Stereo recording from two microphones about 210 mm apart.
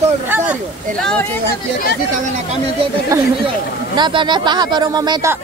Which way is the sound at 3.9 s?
20° right (ahead or behind).